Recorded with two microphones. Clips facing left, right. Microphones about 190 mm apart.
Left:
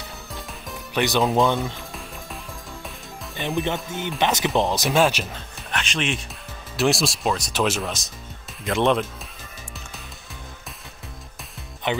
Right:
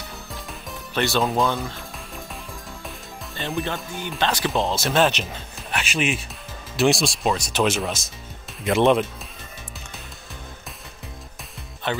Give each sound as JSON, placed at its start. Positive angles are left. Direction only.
{"t": 0.3, "sound": "music", "side_deg": 0}
{"t": 0.9, "sound": "speech", "side_deg": 15}
{"t": 1.2, "sound": "speech", "side_deg": 0}
{"t": 3.6, "sound": "speech", "side_deg": 20}
{"t": 5.0, "sound": "speech", "side_deg": 5}
{"t": 11.8, "sound": "speech", "side_deg": 15}